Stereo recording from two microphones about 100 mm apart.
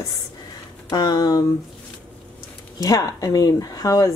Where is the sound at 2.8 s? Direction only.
35° left (ahead or behind).